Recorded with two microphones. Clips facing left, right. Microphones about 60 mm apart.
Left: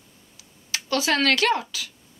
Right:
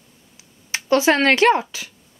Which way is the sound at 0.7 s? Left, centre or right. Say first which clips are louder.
Right 7 dB; right.